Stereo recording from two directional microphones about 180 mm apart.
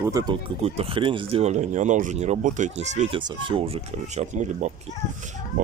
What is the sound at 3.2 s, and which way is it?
Speech, 25° right (ahead or behind).